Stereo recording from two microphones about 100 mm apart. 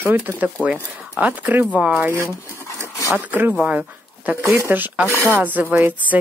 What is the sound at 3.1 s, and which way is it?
Speech, 20° right (ahead or behind).